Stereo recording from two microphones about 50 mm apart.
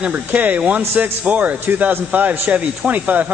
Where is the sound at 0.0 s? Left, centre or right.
Right.